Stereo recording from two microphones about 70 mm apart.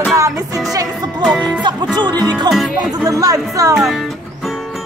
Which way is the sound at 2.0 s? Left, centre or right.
Right.